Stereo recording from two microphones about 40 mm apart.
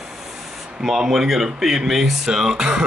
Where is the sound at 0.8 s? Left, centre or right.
Centre.